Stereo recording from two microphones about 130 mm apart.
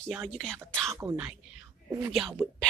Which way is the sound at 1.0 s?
15° right (ahead or behind).